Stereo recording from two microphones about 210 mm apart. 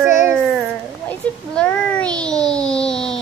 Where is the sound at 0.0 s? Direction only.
10° right (ahead or behind).